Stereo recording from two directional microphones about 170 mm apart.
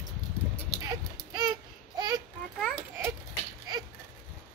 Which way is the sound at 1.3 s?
25° right (ahead or behind).